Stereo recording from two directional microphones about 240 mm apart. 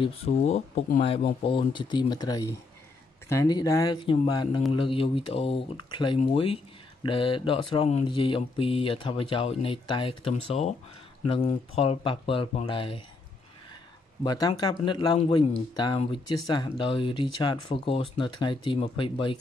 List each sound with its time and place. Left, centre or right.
0.0 s speech: left
14.2 s speech: centre